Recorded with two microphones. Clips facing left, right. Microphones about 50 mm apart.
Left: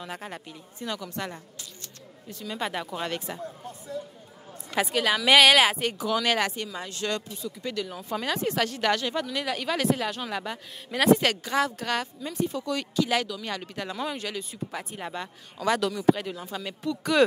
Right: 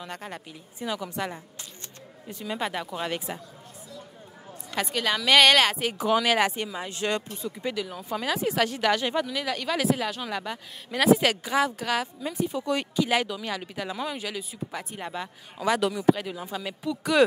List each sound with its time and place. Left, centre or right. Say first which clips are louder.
0.0 s speech: even; centre
0.7 s speech: right 3 dB; centre
2.6 s speech: left 1 dB; centre
3.3 s speech: even; centre
4.7 s speech: left 2 dB; centre
6.2 s speech: right 2 dB; centre
7.7 s speech: even; centre
12.6 s speech: right 1 dB; centre
13.4 s speech: right 1 dB; centre
16.1 s speech: left 1 dB; centre